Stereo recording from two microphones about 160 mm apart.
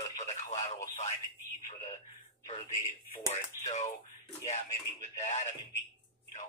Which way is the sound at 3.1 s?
45° left (ahead or behind).